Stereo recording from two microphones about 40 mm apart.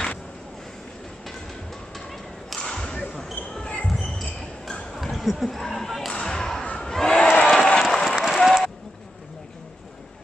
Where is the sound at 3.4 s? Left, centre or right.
Left.